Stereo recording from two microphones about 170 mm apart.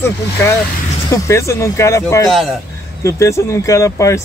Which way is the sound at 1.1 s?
15° left (ahead or behind).